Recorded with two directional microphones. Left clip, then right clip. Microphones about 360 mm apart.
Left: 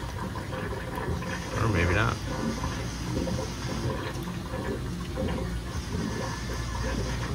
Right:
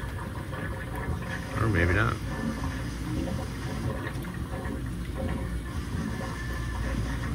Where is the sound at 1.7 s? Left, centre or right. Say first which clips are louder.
Right 1 dB; centre.